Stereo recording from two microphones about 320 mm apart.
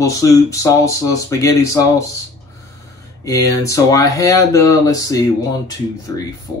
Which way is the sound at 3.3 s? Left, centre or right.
Centre.